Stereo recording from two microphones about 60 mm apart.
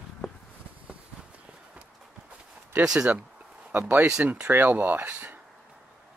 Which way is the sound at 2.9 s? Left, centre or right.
Centre.